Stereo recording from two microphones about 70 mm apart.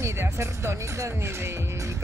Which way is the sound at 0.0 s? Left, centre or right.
Right.